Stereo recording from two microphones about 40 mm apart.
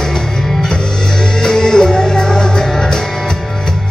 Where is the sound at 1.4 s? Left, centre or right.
Centre.